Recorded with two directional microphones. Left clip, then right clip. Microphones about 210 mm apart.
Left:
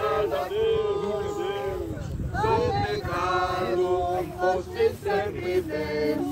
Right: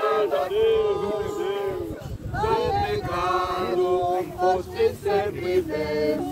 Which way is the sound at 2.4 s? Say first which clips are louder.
Right 1 dB; 40° right (ahead or behind).